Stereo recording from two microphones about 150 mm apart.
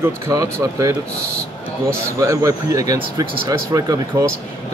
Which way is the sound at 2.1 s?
20° right (ahead or behind).